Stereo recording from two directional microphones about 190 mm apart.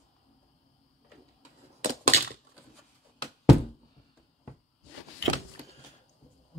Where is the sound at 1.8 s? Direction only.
45° right (ahead or behind).